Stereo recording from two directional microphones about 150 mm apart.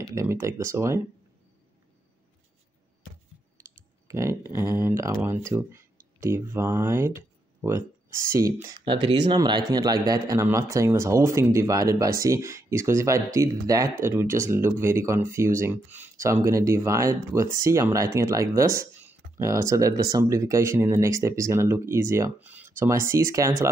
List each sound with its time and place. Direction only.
0.1 s speech: 20° right (ahead or behind)
4.1 s speech: 20° right (ahead or behind)
8.8 s speech: 30° right (ahead or behind)